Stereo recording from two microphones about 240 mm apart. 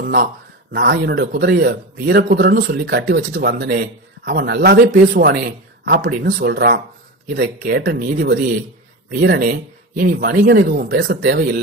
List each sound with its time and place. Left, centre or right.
0.0 s speech: right